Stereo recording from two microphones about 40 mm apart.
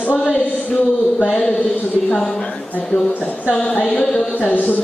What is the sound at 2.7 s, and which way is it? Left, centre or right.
Speech, left.